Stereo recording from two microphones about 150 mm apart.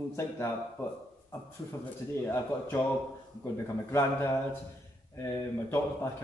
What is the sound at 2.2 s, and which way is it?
A man's voice, 15° left (ahead or behind).